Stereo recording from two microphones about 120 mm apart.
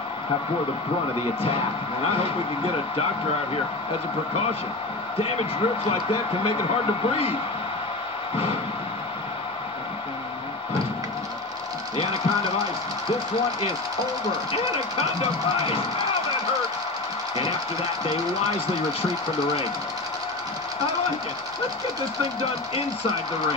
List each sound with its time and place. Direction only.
5.2 s a man's voice: 55° left (ahead or behind)
14.5 s a man's voice: 55° left (ahead or behind)